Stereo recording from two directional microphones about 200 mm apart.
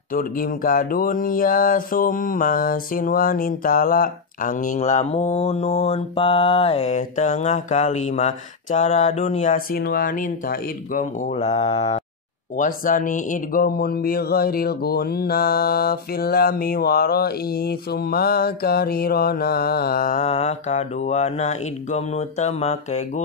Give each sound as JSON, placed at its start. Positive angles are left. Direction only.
{"t": 0.1, "sound": "mantra", "side_deg": 45}
{"t": 12.5, "sound": "speech", "side_deg": 40}